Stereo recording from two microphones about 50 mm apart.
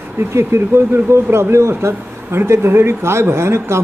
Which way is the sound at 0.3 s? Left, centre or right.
Right.